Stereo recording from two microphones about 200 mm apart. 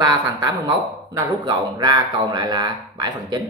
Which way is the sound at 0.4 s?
20° right (ahead or behind).